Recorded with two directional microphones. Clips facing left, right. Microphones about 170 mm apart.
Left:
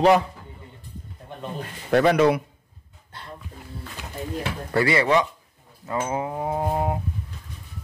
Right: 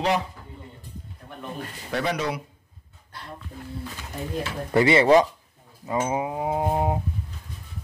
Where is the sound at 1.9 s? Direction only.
55° left (ahead or behind).